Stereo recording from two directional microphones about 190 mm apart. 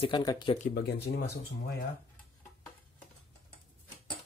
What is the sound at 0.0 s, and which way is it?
Speech, 20° left (ahead or behind).